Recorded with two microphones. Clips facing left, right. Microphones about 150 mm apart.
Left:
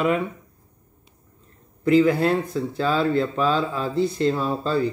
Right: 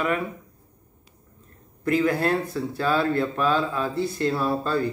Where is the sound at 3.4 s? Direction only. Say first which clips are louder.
Left 1 dB; 55° right (ahead or behind).